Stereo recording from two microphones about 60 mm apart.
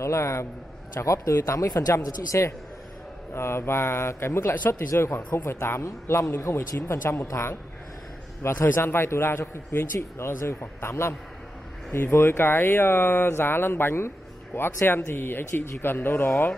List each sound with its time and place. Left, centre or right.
0.0 s speech: left
3.3 s a man's voice: left